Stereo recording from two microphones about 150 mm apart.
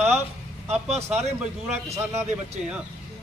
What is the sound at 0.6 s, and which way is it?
Speech, 45° right (ahead or behind).